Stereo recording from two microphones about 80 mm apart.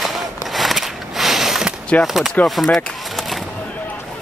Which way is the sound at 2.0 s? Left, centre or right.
Centre.